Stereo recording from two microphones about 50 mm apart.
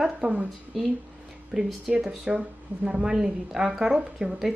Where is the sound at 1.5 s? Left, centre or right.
Centre.